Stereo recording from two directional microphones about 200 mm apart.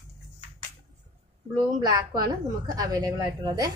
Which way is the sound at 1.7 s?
20° right (ahead or behind).